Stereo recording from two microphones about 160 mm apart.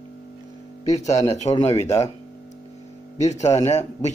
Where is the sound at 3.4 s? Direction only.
20° left (ahead or behind).